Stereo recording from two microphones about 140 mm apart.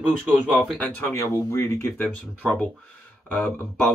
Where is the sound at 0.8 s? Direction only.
15° left (ahead or behind).